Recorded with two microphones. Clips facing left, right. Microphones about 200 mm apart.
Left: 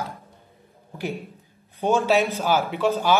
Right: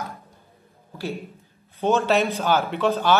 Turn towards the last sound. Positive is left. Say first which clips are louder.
# even
turn(degrees=10)  # may be behind; listen again after turning